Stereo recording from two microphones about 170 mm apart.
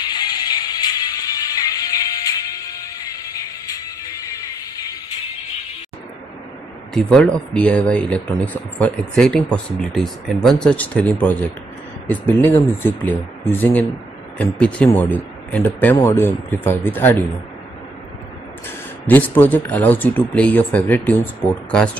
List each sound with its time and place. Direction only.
0.0 s music: 25° left (ahead or behind)
6.9 s speech: 5° left (ahead or behind)
19.0 s speech: 10° left (ahead or behind)